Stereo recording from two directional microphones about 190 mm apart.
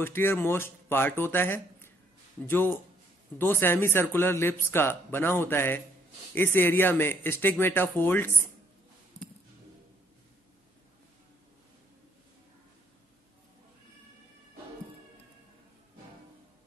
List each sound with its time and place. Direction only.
0.0 s a man's voice: 10° left (ahead or behind)